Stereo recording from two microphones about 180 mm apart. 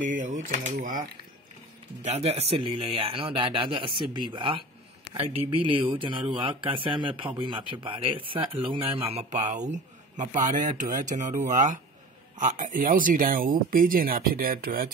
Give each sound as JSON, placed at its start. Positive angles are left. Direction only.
{"t": 0.0, "sound": "speech", "side_deg": -45}
{"t": 2.0, "sound": "speech", "side_deg": -35}